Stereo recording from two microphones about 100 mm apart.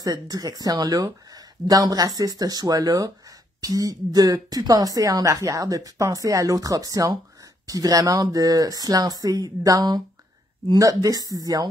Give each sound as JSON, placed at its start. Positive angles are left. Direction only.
{"t": 0.0, "sound": "speech", "side_deg": -40}